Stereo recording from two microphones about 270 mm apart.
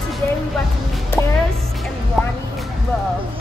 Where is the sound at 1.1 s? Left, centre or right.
Centre.